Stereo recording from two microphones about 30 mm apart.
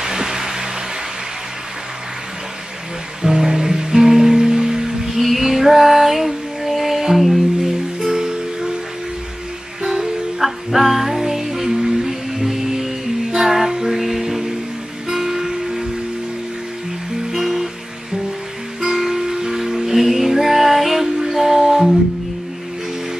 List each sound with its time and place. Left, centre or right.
0.0 s a sound: centre
3.2 s music: centre
8.0 s music: right
9.8 s music: centre
10.4 s music: centre
17.3 s music: centre
18.9 s music: centre